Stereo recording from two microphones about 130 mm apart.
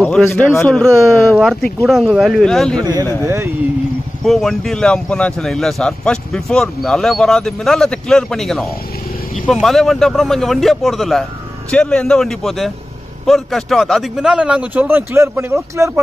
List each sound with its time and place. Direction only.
0.0 s a man's voice: 10° left (ahead or behind)
0.7 s speech: centre (ahead or behind)
2.8 s speech: 30° right (ahead or behind)
4.2 s a man's voice: centre (ahead or behind); by 15.9 s 20° right (ahead or behind)